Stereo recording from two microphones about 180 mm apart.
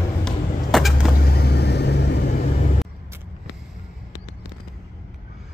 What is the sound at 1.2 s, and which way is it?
Vehicle, 60° left (ahead or behind).